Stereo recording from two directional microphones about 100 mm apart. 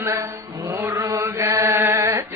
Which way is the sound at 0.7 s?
30° right (ahead or behind).